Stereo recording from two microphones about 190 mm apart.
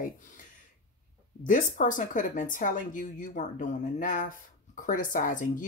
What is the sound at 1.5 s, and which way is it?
Speech, 40° left (ahead or behind).